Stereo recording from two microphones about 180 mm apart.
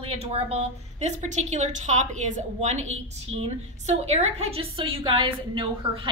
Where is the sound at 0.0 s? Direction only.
30° right (ahead or behind).